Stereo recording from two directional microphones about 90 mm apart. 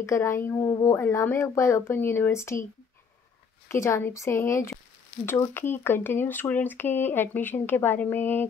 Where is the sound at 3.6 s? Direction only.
30° left (ahead or behind).